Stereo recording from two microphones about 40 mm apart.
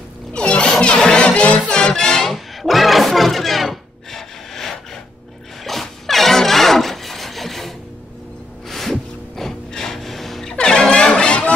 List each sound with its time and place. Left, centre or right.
0.3 s music: left
2.3 s music: centre
9.4 s a sound: centre
10.5 s music: centre